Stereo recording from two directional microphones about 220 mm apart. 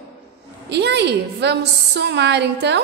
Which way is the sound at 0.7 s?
50° right (ahead or behind).